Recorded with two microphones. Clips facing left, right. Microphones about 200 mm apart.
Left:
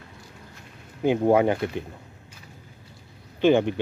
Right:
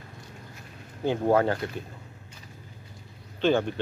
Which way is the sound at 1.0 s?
15° left (ahead or behind).